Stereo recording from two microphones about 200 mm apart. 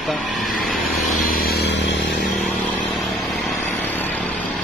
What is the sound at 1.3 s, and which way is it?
Chainsaw, 50° left (ahead or behind).